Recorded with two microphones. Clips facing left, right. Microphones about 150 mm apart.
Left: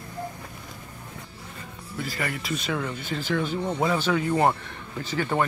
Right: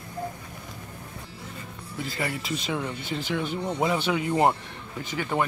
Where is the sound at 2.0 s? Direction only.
20° right (ahead or behind).